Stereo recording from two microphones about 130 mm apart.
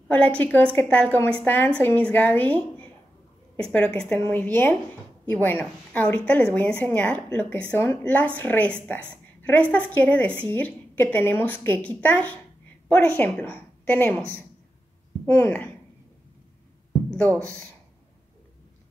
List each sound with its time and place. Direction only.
0.4 s a woman's voice: 15° left (ahead or behind)
17.1 s speech: 10° left (ahead or behind)